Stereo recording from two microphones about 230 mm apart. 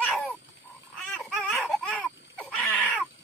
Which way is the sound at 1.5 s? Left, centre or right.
Centre.